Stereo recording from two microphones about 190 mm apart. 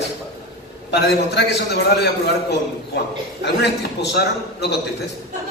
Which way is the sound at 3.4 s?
60° left (ahead or behind).